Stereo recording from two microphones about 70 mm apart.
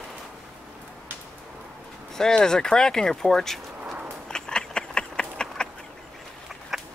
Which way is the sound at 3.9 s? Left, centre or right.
Right.